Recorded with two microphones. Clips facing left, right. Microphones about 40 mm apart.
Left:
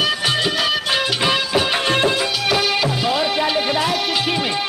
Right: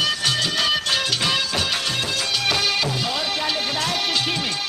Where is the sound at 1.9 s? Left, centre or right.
Left.